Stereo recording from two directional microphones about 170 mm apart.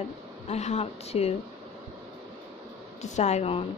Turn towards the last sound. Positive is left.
turn(degrees=40)  # may be behind; listen again after turning